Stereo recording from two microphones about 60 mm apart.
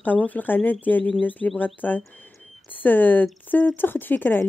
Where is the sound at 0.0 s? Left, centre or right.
Left.